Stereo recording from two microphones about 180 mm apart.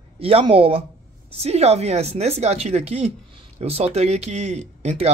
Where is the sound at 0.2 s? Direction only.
30° right (ahead or behind).